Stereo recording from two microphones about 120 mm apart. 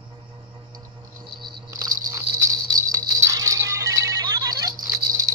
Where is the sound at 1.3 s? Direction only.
35° right (ahead or behind).